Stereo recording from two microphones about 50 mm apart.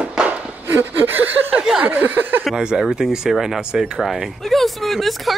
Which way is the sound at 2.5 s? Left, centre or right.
Centre.